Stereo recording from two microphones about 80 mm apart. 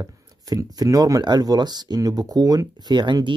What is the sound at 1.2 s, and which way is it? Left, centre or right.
Speech, right.